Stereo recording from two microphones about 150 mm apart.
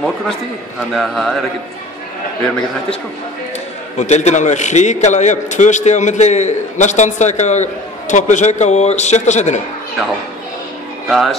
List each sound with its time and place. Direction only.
0.9 s a man's voice: centre (ahead or behind)
4.0 s a man's voice: 50° left (ahead or behind)
11.1 s a man's voice: centre (ahead or behind)